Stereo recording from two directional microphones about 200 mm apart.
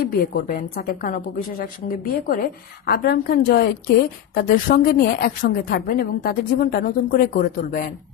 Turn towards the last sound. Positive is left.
turn(degrees=45)  # may be behind; listen again after turning